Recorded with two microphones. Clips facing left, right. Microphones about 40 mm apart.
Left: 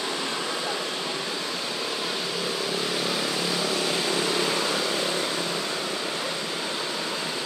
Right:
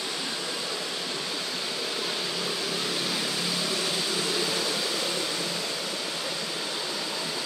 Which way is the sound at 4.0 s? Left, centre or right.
Left.